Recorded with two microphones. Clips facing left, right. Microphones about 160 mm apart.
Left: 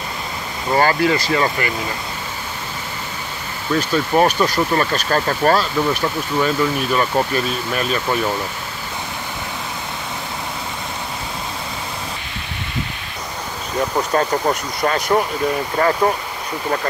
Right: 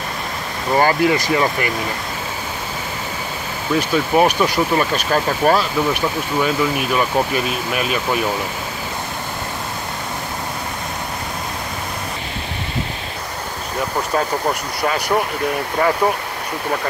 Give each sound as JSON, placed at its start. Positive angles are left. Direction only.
{"t": 0.7, "sound": "speech", "side_deg": -15}
{"t": 3.7, "sound": "speech", "side_deg": -10}
{"t": 14.8, "sound": "speech", "side_deg": -10}